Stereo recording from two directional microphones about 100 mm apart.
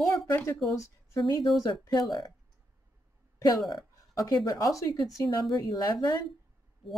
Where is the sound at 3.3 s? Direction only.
40° left (ahead or behind).